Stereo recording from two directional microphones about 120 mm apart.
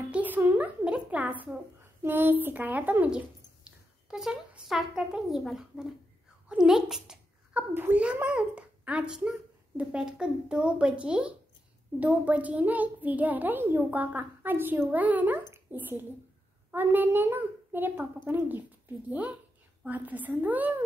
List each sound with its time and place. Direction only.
0.1 s a sound: 15° right (ahead or behind)
0.8 s a child's voice: 10° right (ahead or behind)
7.7 s a child's voice: 15° right (ahead or behind)